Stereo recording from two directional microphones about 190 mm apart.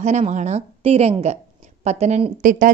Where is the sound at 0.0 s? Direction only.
35° right (ahead or behind).